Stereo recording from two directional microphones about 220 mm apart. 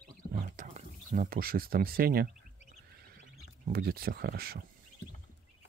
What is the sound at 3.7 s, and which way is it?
Speech, 45° right (ahead or behind).